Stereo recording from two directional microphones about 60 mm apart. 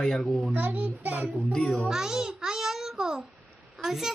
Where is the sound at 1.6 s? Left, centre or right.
Centre.